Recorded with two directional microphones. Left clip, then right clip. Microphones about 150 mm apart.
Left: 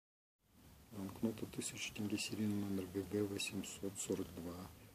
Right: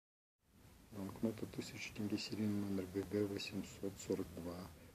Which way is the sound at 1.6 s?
25° left (ahead or behind).